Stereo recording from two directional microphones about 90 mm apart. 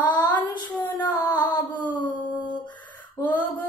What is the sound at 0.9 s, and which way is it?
Child singing, 20° left (ahead or behind).